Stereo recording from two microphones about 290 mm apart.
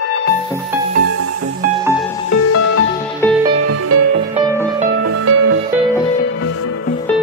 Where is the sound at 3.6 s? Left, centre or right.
Right.